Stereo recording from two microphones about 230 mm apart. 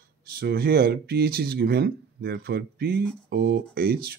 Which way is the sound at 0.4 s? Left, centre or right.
Right.